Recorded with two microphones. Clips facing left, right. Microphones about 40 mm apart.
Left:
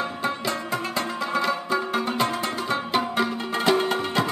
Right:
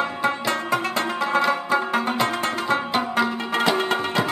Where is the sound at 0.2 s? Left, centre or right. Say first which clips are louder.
Right 4 dB; right.